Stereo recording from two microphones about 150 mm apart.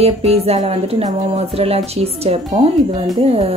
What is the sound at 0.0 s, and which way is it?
Speech, 45° right (ahead or behind).